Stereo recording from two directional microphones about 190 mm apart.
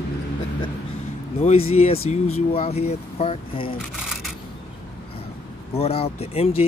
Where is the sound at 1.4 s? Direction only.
30° left (ahead or behind).